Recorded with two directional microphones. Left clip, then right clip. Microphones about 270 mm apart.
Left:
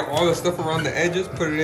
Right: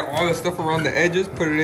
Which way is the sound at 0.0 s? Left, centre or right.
Centre.